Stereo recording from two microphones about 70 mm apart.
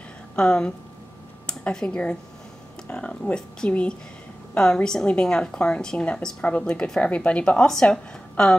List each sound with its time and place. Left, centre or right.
0.4 s a woman's voice: centre